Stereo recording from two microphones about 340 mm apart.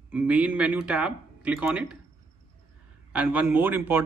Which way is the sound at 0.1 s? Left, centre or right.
Centre.